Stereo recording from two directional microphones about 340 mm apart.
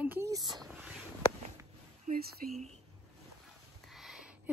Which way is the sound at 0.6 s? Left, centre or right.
Centre.